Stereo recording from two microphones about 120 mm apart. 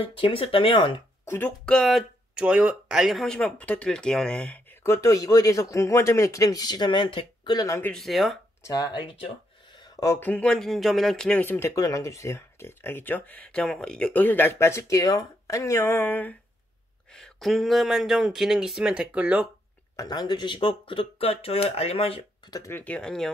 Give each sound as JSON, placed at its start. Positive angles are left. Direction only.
{"t": 0.1, "sound": "speech", "side_deg": 45}
{"t": 1.2, "sound": "speech", "side_deg": 15}
{"t": 1.7, "sound": "speech", "side_deg": 5}
{"t": 2.4, "sound": "speech", "side_deg": -10}
{"t": 4.8, "sound": "speech", "side_deg": 25}
{"t": 7.5, "sound": "speech", "side_deg": 30}
{"t": 7.8, "sound": "speech", "side_deg": 5}
{"t": 8.6, "sound": "speech", "side_deg": 30}
{"t": 9.8, "sound": "a sound", "side_deg": 30}
{"t": 10.2, "sound": "speech", "side_deg": 10}
{"t": 11.4, "sound": "speech", "side_deg": 20}
{"t": 17.1, "sound": "speech", "side_deg": 5}
{"t": 20.0, "sound": "speech", "side_deg": 35}
{"t": 22.5, "sound": "speech", "side_deg": 25}